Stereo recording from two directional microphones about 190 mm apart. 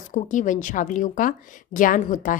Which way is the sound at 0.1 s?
40° left (ahead or behind).